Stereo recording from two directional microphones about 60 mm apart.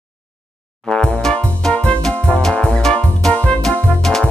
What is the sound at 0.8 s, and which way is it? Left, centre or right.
Music, centre.